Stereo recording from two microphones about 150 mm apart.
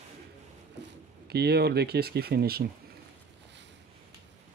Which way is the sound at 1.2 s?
90° right.